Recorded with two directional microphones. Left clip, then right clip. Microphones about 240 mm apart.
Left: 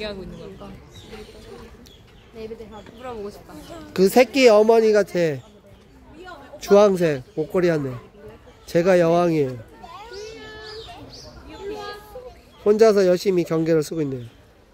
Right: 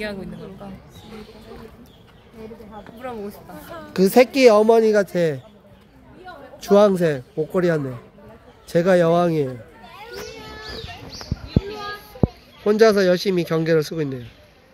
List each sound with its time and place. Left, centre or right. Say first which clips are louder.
0.0 s speech: right 2 dB; right
3.0 s speech: right 1 dB; right
3.9 s speech: right 1 dB; centre
6.6 s speech: even; centre
12.6 s speech: even; centre